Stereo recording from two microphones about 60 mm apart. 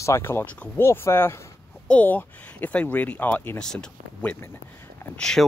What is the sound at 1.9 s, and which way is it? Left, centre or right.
Speech, left.